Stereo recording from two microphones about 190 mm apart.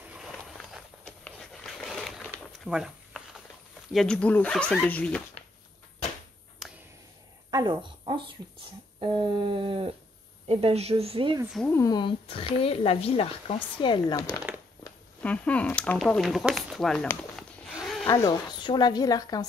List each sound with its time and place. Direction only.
0.0 s walk: 5° right (ahead or behind)
3.9 s speech: 5° left (ahead or behind)
6.6 s a sound: centre (ahead or behind)
7.5 s speech: 25° right (ahead or behind)
9.0 s a sound: 25° right (ahead or behind)
10.4 s a woman's voice: 30° right (ahead or behind)
11.7 s speech: 20° left (ahead or behind)
15.2 s speech: 5° left (ahead or behind)
18.0 s speech: 20° left (ahead or behind)